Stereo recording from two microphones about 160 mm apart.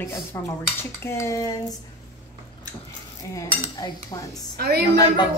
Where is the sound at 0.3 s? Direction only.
20° left (ahead or behind).